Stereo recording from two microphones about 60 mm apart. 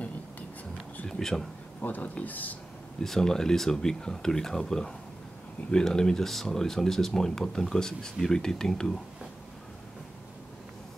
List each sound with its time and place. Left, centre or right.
1.0 s speech: centre
1.8 s speech: left
3.0 s speech: centre